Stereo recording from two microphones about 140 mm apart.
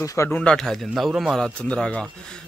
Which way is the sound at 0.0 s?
25° left (ahead or behind).